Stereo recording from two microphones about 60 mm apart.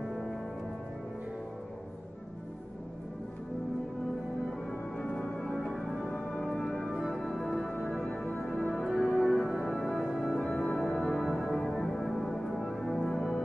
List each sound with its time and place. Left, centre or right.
0.0 s music: centre
4.5 s organ: centre
5.0 s music: centre
6.6 s organ: centre
6.9 s music: centre
8.8 s music: centre